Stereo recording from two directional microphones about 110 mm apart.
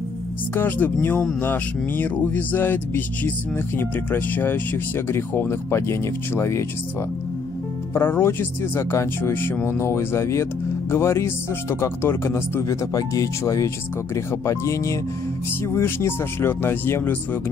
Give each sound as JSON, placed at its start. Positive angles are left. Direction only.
{"t": 0.6, "sound": "speech", "side_deg": 20}
{"t": 7.9, "sound": "speech", "side_deg": 20}